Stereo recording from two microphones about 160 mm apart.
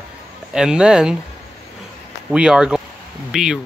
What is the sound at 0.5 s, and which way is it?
Speech, 5° right (ahead or behind).